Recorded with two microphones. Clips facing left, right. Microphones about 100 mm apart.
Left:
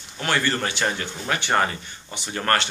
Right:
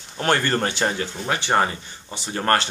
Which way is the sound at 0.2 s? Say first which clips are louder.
Right 3 dB; 45° right (ahead or behind).